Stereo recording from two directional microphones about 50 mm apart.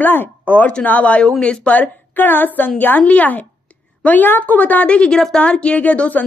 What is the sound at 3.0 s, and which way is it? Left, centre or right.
A woman's voice, left.